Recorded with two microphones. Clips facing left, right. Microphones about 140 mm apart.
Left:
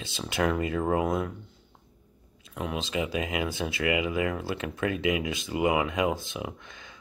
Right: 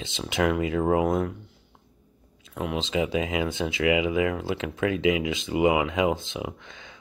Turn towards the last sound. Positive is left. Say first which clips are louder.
# right 3 dB
turn(degrees=-25)  # may be behind; listen again after turning